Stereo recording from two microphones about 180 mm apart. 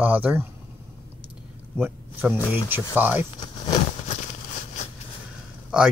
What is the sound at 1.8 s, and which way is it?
Speech, 10° right (ahead or behind).